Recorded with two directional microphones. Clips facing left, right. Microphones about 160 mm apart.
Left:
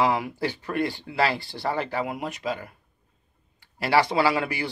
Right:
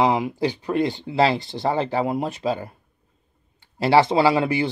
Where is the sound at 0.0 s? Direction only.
20° right (ahead or behind).